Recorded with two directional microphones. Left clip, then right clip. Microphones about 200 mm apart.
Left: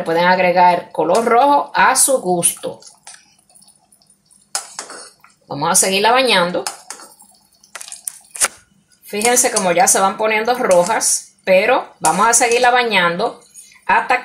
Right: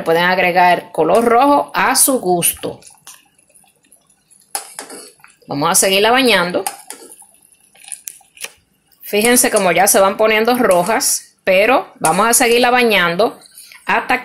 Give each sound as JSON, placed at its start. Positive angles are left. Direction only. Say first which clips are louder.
{"t": 0.0, "sound": "speech", "louder": "even", "side_deg": -30}
{"t": 5.5, "sound": "speech", "louder": "right 2 dB", "side_deg": -30}
{"t": 9.0, "sound": "speech", "louder": "right 2 dB", "side_deg": -35}